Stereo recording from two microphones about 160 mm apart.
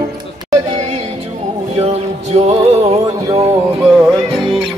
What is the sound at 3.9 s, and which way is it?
Music, centre (ahead or behind).